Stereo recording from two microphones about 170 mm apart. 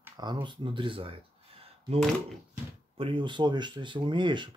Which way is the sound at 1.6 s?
35° right (ahead or behind).